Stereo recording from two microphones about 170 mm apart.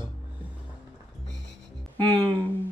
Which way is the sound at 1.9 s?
10° left (ahead or behind).